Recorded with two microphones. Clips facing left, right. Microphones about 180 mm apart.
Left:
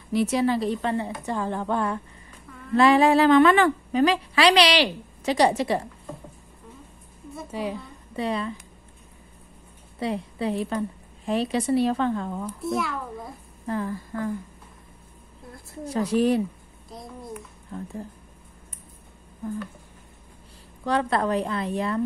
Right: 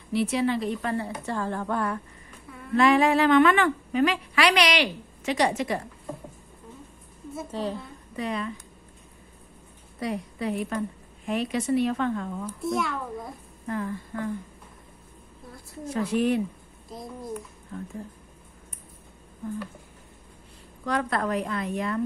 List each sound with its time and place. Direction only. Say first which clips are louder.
0.1 s a woman's voice: left 2 dB; 45° left (ahead or behind)
0.9 s a woman's voice: left 2 dB; 20° left (ahead or behind)
7.5 s a woman's voice: left 1 dB; 10° left (ahead or behind)
8.2 s a woman's voice: left 3 dB; 30° left (ahead or behind)
9.9 s a woman's voice: left 2 dB; 25° left (ahead or behind)
12.5 s a child's voice: right 1 dB; centre (ahead or behind)
13.7 s a woman's voice: left 2 dB; 30° left (ahead or behind)
15.8 s a woman's voice: left 3 dB; 35° left (ahead or behind)
16.9 s a child's voice: right 2 dB; centre (ahead or behind)
20.8 s a woman's voice: left 3 dB; 30° left (ahead or behind)